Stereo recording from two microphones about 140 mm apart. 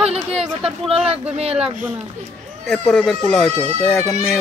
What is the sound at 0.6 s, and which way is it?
Speech, 5° right (ahead or behind).